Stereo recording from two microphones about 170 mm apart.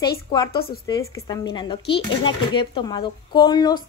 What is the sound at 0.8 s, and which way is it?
Speech, 20° left (ahead or behind).